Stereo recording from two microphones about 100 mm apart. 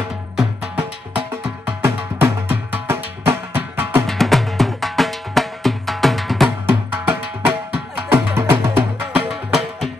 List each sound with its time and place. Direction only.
0.7 s music: 15° right (ahead or behind)
1.8 s music: 25° right (ahead or behind)
4.1 s music: centre (ahead or behind)
6.6 s music: 20° right (ahead or behind)
9.3 s music: centre (ahead or behind)